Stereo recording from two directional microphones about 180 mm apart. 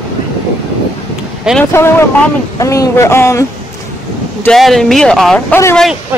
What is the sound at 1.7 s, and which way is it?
Speech, 15° left (ahead or behind).